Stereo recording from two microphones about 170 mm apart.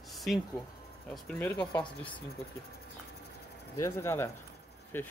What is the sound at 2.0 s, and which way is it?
Speech, 30° left (ahead or behind).